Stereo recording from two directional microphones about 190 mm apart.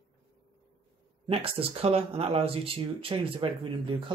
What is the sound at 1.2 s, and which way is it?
Speech, 30° right (ahead or behind).